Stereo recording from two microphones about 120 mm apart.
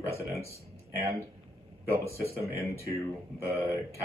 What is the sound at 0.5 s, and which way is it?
Speech, 25° right (ahead or behind).